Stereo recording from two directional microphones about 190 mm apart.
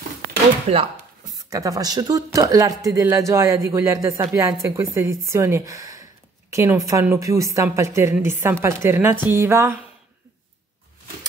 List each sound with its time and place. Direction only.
0.7 s speech: 35° right (ahead or behind)
1.5 s speech: 20° right (ahead or behind)